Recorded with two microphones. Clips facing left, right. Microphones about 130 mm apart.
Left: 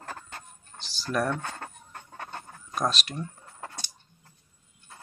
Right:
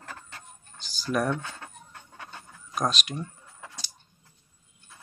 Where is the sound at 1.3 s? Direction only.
50° left (ahead or behind).